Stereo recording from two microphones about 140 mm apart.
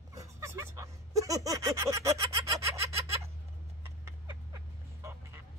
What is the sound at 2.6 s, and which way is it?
Snicker, 20° right (ahead or behind).